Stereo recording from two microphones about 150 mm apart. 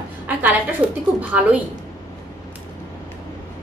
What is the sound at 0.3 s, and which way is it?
Speech, 10° right (ahead or behind).